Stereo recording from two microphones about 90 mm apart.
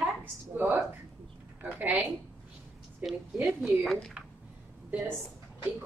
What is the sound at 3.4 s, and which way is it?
Speech, 5° right (ahead or behind).